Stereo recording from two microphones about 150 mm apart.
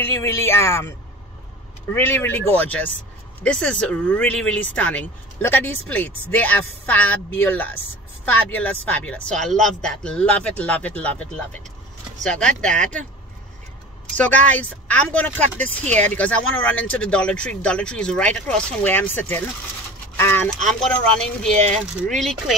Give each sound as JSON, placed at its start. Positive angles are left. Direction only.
{"t": 0.0, "sound": "speech", "side_deg": 20}
{"t": 14.1, "sound": "speech", "side_deg": 10}
{"t": 21.2, "sound": "speech", "side_deg": 5}